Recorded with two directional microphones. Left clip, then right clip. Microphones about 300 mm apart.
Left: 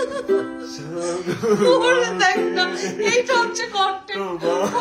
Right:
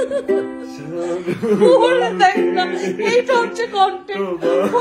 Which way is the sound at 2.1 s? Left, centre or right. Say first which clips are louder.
Right 4 dB; centre.